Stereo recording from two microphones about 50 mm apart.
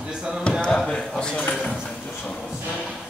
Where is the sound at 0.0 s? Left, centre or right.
Centre.